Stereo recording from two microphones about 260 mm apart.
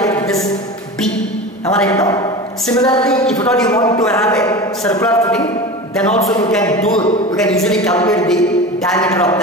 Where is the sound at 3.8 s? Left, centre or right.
Centre.